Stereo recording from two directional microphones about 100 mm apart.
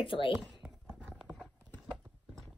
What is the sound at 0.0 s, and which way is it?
Speech, 60° left (ahead or behind).